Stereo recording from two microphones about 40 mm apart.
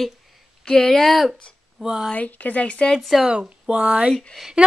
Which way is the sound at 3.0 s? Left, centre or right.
Centre.